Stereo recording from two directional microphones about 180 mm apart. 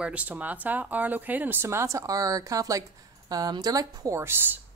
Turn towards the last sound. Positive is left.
turn(degrees=-10)  # may be behind; listen again after turning